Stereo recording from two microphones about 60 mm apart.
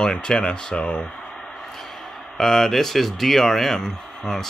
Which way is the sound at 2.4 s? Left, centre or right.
Centre.